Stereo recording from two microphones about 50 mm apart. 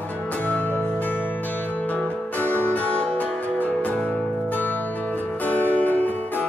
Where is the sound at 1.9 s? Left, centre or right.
Left.